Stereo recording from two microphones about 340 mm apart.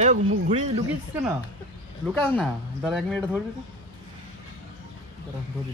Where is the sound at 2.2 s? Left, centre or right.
Centre.